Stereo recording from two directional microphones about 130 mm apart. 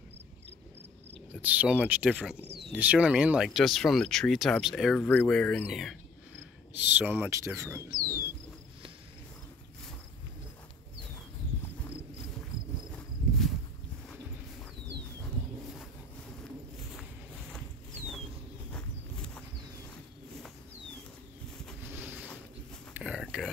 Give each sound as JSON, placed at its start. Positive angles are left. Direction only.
{"t": 1.3, "sound": "speech", "side_deg": -10}
{"t": 5.0, "sound": "speech", "side_deg": 10}
{"t": 7.0, "sound": "speech", "side_deg": -10}
{"t": 7.2, "sound": "speech", "side_deg": -25}
{"t": 18.7, "sound": "a sound", "side_deg": 10}
{"t": 21.9, "sound": "boat", "side_deg": -15}
{"t": 22.9, "sound": "a sound", "side_deg": -5}